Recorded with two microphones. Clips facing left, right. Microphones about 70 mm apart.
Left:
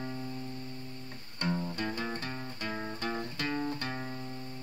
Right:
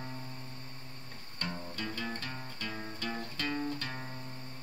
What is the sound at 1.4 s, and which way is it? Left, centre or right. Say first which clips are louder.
Music: left 8 dB; centre.